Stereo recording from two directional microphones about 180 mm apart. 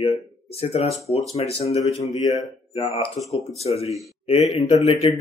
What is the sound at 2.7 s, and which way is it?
Speech, 30° left (ahead or behind).